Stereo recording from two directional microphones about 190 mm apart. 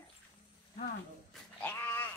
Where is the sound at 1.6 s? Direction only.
10° left (ahead or behind).